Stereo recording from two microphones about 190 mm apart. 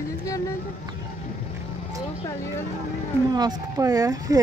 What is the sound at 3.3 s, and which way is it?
Speech, 20° right (ahead or behind).